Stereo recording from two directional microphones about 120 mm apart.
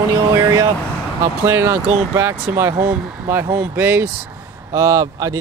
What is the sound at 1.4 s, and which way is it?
Speech, 20° right (ahead or behind).